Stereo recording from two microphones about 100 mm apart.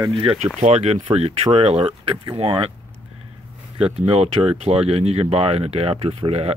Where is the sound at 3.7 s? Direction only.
80° right.